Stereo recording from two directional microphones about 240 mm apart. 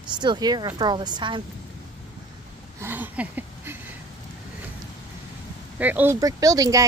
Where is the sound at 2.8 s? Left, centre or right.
Centre.